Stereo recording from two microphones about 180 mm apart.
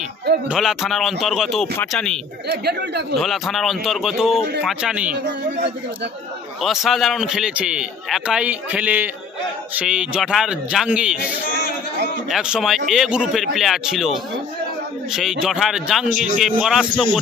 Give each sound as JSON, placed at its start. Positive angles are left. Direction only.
{"t": 0.5, "sound": "a man's voice", "side_deg": 0}
{"t": 2.4, "sound": "speech", "side_deg": -65}
{"t": 3.2, "sound": "a man's voice", "side_deg": 0}
{"t": 6.6, "sound": "a man's voice", "side_deg": 0}
{"t": 12.3, "sound": "a man's voice", "side_deg": -5}